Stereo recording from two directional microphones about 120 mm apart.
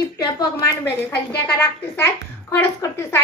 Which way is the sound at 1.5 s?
20° left (ahead or behind).